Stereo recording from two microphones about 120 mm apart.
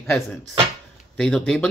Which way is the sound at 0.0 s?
Centre (ahead or behind).